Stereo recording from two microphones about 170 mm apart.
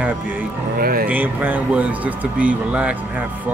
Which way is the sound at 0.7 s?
60° right (ahead or behind).